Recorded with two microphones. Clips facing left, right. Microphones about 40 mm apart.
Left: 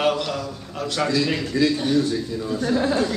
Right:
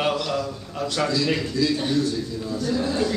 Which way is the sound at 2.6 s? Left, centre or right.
Left.